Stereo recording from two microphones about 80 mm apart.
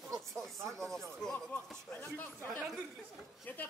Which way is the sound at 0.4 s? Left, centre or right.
Centre.